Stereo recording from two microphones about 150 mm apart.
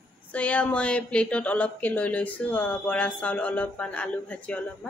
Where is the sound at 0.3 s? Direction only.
10° left (ahead or behind).